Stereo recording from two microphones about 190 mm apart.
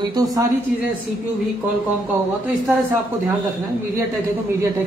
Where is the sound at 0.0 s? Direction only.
20° right (ahead or behind).